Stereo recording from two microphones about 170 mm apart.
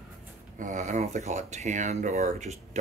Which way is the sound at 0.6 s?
45° right (ahead or behind).